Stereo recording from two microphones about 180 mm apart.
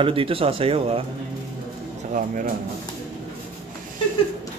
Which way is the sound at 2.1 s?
50° right (ahead or behind).